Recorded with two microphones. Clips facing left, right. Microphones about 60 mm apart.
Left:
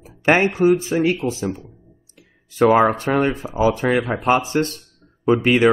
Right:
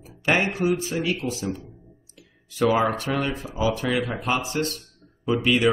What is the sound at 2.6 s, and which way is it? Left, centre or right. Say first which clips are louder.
Speech: left 6 dB; left.